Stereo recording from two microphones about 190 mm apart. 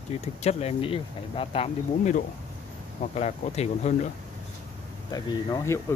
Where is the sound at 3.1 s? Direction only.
35° left (ahead or behind).